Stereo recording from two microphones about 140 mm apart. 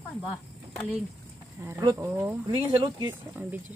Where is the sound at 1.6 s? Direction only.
20° right (ahead or behind).